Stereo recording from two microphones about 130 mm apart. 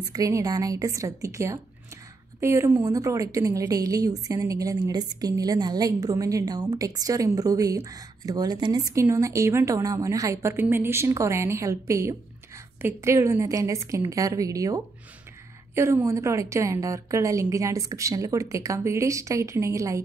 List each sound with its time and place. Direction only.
0.1 s a woman's voice: 25° right (ahead or behind)